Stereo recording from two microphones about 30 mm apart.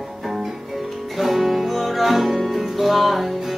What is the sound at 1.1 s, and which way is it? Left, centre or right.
Music, centre.